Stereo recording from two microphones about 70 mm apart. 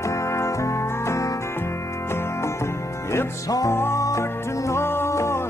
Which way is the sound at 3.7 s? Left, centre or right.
Left.